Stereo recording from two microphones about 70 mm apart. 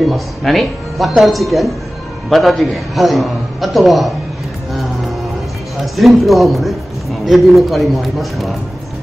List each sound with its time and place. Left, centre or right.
0.0 s a man's voice: centre
5.8 s a man's voice: centre